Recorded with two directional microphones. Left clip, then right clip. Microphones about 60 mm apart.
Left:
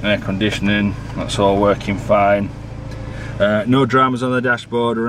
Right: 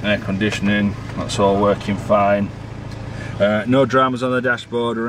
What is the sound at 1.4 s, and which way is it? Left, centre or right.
Speech, centre.